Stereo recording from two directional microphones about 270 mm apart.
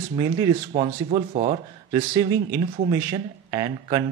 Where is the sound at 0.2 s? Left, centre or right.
Centre.